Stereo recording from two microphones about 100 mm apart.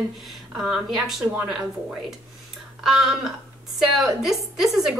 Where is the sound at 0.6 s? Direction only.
5° right (ahead or behind).